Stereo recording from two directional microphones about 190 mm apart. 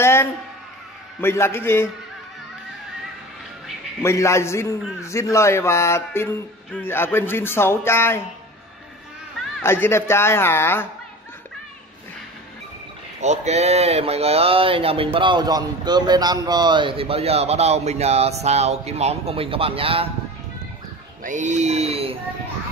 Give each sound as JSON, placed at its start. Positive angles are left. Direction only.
{"t": 0.0, "sound": "a sound", "side_deg": 15}
{"t": 1.2, "sound": "speech", "side_deg": 15}
{"t": 4.0, "sound": "speech", "side_deg": 15}
{"t": 9.6, "sound": "speech", "side_deg": 15}
{"t": 13.2, "sound": "speech", "side_deg": -35}
{"t": 21.2, "sound": "speech", "side_deg": -40}